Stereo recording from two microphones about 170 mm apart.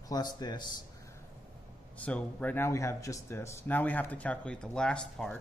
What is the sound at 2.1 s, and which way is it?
Speech, 10° left (ahead or behind).